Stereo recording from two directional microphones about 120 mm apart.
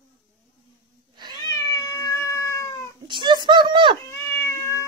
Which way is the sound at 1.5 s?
30° left (ahead or behind).